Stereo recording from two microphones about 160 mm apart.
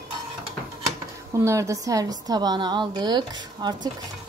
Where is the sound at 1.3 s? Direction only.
20° right (ahead or behind).